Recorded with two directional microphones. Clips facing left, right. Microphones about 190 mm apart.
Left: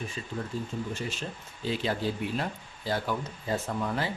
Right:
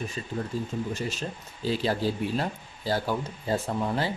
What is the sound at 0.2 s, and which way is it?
Speech, 45° right (ahead or behind).